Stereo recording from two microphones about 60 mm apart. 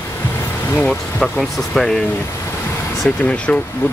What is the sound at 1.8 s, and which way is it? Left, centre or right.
Speech, centre.